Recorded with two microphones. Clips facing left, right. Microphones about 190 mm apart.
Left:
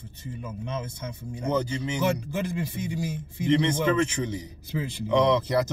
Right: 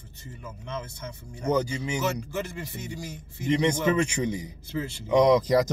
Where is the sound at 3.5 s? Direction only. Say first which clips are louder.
Even; 15° right (ahead or behind).